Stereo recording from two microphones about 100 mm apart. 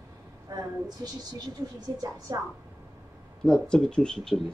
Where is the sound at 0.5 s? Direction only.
35° right (ahead or behind).